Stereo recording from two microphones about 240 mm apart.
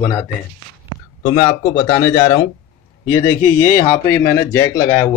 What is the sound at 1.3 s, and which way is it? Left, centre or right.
Speech, centre.